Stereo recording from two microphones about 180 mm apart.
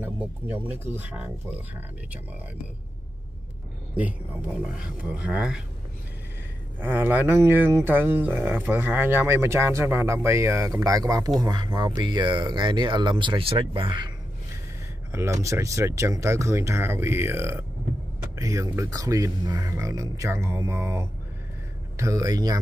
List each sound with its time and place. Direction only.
0.0 s speech: 10° right (ahead or behind)
4.7 s speech: 5° right (ahead or behind)
6.8 s speech: 10° right (ahead or behind); by 14.1 s 25° right (ahead or behind)
15.1 s speech: 15° right (ahead or behind)